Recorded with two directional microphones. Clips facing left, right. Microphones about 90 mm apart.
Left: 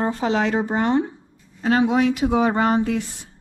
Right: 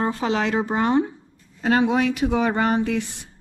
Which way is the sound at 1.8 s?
20° left (ahead or behind).